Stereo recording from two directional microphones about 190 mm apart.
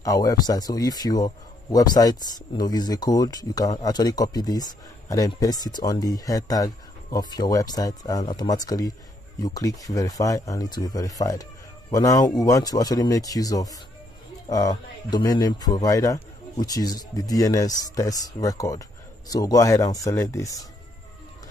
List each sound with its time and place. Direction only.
0.0 s speech: 20° left (ahead or behind)